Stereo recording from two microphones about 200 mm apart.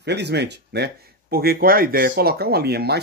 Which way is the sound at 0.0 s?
60° right (ahead or behind).